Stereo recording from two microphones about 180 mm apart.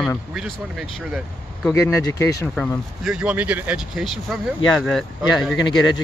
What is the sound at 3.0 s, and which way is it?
Speech, 5° right (ahead or behind).